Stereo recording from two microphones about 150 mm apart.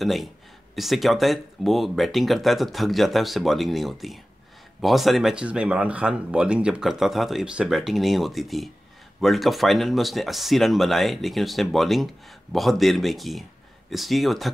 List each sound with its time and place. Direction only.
0.0 s speech: centre (ahead or behind)